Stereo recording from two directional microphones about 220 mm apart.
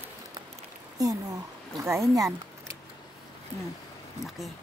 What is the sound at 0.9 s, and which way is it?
Speech, 15° right (ahead or behind).